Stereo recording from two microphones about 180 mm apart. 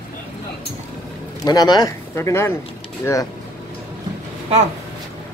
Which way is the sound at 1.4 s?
20° left (ahead or behind).